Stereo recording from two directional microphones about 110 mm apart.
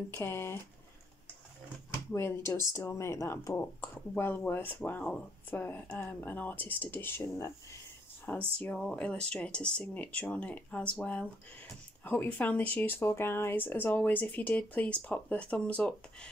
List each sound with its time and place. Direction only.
0.1 s speech: 20° left (ahead or behind)
2.1 s speech: 25° left (ahead or behind)
8.3 s speech: 15° left (ahead or behind)